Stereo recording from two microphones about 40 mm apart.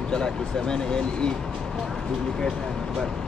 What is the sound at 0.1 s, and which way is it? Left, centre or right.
Speech, centre.